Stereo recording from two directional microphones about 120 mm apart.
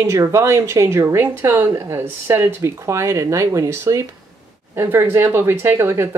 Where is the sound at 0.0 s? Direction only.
25° right (ahead or behind).